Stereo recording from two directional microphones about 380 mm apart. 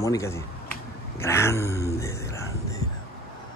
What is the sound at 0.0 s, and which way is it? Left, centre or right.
Speech, centre.